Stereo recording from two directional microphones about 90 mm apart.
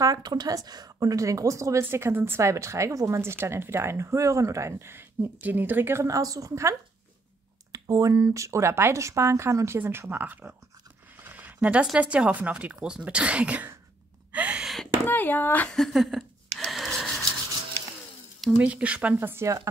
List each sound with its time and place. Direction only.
0.0 s a woman's voice: 45° right (ahead or behind); by 6.0 s 25° right (ahead or behind)
6.0 s a woman's voice: 40° right (ahead or behind); by 13.7 s 15° right (ahead or behind)
14.3 s gasp: 15° right (ahead or behind)
15.0 s speech: 20° left (ahead or behind)
15.7 s a sound: centre (ahead or behind)
18.6 s speech: 15° right (ahead or behind); by 19.7 s 35° right (ahead or behind)